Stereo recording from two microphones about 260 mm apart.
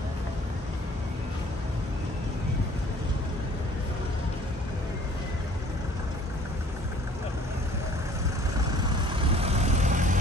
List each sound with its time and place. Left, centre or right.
9.4 s vehicle: right